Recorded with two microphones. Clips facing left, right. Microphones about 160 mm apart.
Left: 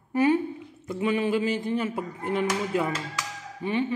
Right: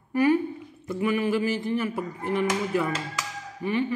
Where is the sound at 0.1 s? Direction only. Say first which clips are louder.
Right 1 dB; 25° left (ahead or behind).